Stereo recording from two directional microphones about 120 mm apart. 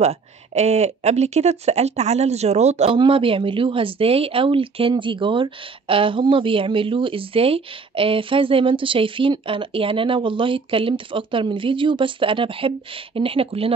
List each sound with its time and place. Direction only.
0.0 s speech: 65° right (ahead or behind)
3.0 s speech: 50° right (ahead or behind)